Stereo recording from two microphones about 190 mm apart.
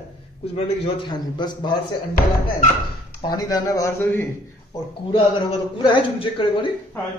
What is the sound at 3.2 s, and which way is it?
A man's voice, 20° left (ahead or behind).